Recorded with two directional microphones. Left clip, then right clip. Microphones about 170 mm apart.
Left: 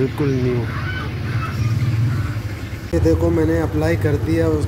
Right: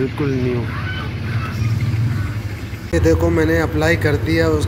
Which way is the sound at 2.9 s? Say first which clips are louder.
Right 2 dB; 15° left (ahead or behind).